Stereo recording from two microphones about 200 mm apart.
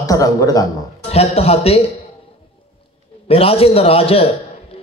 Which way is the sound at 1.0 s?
30° left (ahead or behind).